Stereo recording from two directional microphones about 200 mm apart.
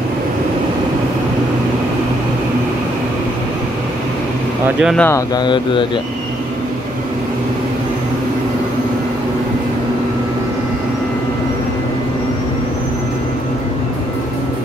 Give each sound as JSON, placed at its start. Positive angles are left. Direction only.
{"t": 4.9, "sound": "speech", "side_deg": 10}